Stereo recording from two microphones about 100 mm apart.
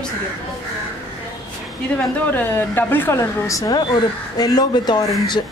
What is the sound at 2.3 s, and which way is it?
A woman's voice, 20° left (ahead or behind).